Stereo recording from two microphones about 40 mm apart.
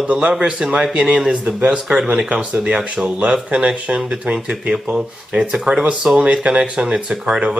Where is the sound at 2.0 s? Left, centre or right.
Right.